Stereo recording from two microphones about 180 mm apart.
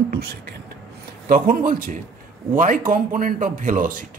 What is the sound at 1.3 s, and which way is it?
Speech, 50° right (ahead or behind).